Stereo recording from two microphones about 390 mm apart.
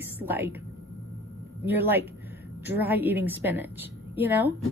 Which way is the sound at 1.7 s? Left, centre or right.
Centre.